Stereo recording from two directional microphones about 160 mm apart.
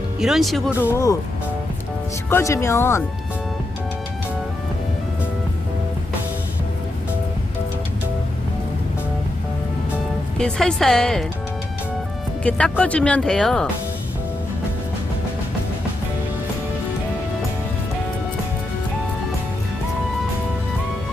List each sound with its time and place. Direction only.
0.2 s speech: centre (ahead or behind)
2.2 s speech: 15° left (ahead or behind)
10.3 s speech: 5° left (ahead or behind)
12.4 s speech: 5° left (ahead or behind)